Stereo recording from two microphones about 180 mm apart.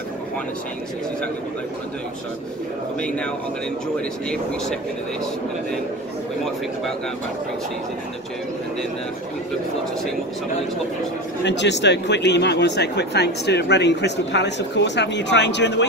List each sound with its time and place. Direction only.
11.4 s speech: 75° left (ahead or behind)